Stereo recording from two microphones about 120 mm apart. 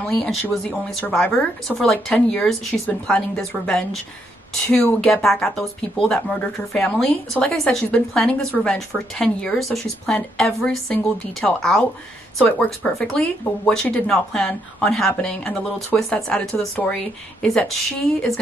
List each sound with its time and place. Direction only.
0.0 s speech: 5° left (ahead or behind)
5.0 s speech: 5° left (ahead or behind)